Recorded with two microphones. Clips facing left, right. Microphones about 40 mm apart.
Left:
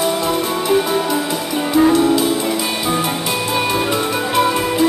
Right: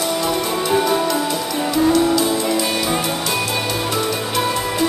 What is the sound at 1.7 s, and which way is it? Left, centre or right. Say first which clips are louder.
Music: left 3 dB; centre.